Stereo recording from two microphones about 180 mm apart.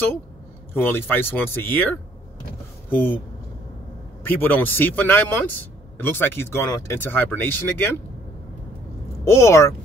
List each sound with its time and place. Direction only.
0.7 s speech: 10° left (ahead or behind)
4.3 s speech: 10° left (ahead or behind)
9.2 s speech: 15° left (ahead or behind)